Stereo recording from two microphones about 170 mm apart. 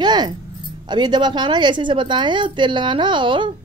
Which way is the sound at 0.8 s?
25° right (ahead or behind).